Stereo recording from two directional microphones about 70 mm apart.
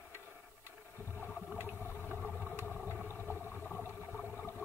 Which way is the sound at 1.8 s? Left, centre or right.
Left.